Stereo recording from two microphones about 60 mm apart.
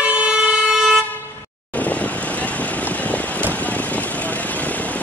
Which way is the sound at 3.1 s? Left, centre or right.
Left.